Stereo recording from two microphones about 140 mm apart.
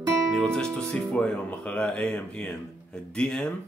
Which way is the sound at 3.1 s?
5° left (ahead or behind).